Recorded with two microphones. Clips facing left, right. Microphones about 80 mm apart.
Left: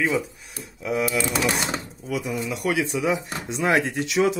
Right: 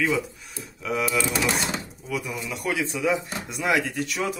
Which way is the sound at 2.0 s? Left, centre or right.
Left.